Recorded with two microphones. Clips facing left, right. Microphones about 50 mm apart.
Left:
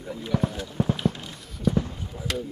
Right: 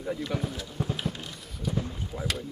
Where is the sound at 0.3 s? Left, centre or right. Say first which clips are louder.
Left 12 dB; left.